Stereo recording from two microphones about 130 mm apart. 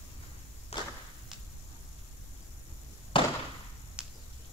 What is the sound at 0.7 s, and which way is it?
Whip, 55° left (ahead or behind).